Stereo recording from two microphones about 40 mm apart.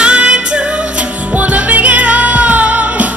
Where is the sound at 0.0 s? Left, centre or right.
Right.